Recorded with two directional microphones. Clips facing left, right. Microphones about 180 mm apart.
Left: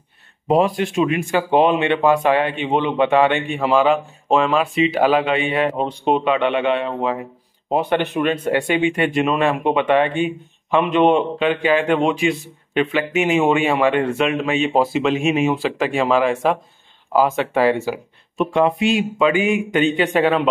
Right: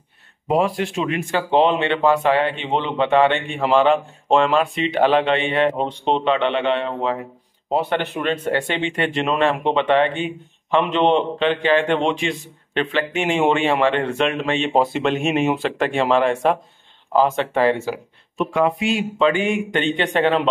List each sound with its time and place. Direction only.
0.5 s speech: 20° left (ahead or behind)
18.4 s speech: 25° left (ahead or behind)
19.1 s speech: 10° left (ahead or behind)